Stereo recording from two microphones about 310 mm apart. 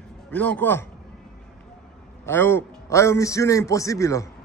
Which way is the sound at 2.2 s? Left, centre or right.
Centre.